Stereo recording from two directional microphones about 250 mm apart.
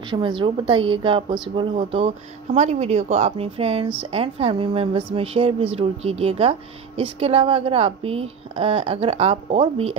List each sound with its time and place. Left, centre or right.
0.1 s a woman's voice: centre